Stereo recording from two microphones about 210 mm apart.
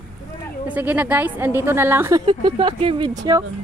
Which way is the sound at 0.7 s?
5° right (ahead or behind).